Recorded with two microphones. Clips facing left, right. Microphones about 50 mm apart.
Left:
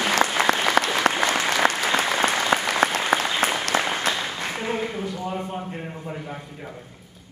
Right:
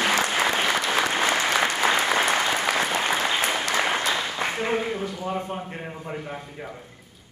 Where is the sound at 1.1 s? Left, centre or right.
Centre.